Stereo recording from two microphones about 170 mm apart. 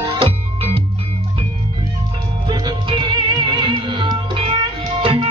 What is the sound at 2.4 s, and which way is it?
Music, 25° right (ahead or behind).